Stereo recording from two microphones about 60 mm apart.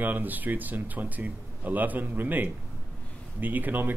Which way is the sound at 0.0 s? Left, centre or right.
Right.